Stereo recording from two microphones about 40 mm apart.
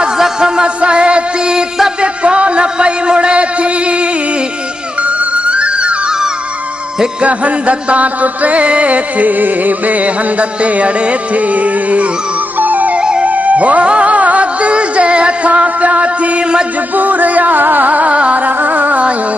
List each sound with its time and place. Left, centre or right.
0.4 s music: right
2.0 s a sound: right
5.0 s music: right
7.2 s music: right
12.9 s music: right
13.2 s music: right
16.9 s carnatic music: right
18.4 s carnatic music: right